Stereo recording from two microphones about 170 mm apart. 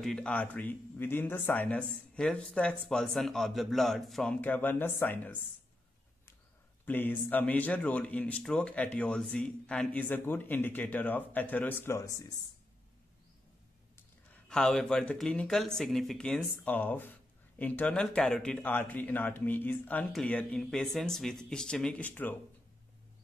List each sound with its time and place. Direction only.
0.0 s a man's voice: 5° left (ahead or behind)
6.9 s a man's voice: 10° left (ahead or behind)
14.3 s a man's voice: 5° left (ahead or behind)